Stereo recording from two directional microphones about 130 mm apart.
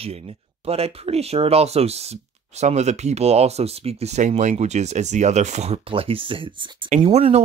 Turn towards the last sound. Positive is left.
turn(degrees=-60)  # may be behind; listen again after turning